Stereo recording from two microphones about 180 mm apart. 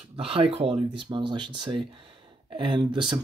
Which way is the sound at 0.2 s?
30° right (ahead or behind).